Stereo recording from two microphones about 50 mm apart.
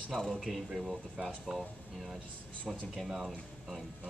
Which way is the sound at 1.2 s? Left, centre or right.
Centre.